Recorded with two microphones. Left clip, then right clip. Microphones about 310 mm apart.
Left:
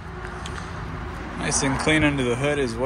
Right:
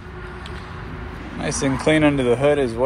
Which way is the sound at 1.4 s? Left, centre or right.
Centre.